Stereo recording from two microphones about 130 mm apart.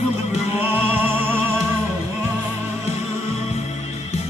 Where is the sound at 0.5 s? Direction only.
15° right (ahead or behind).